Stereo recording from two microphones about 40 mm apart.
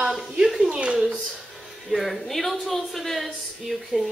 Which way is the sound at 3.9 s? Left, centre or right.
Right.